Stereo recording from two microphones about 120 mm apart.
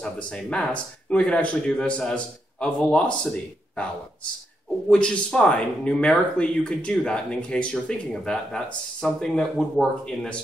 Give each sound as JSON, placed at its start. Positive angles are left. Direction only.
{"t": 0.0, "sound": "speech", "side_deg": 10}
{"t": 4.8, "sound": "speech", "side_deg": 10}